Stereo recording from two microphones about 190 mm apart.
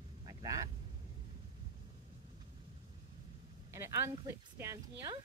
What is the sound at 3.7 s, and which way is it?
Speech, 15° right (ahead or behind).